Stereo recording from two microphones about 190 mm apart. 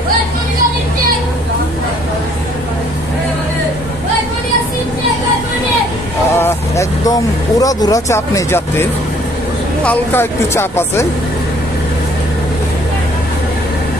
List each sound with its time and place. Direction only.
6.3 s speech: 15° left (ahead or behind)
9.8 s speech: 10° left (ahead or behind)